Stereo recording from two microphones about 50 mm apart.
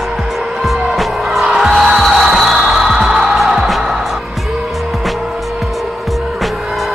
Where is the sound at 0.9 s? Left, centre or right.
Centre.